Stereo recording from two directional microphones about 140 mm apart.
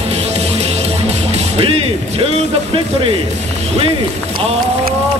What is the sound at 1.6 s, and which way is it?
Speech, 45° right (ahead or behind).